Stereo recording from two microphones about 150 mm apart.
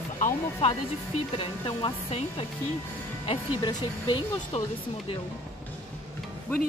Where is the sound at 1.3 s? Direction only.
30° left (ahead or behind).